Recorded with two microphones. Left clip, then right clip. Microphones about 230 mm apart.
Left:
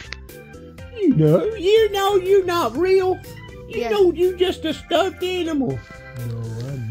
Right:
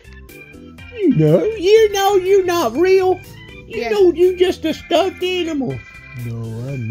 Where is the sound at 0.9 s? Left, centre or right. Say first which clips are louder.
Right 3 dB; right.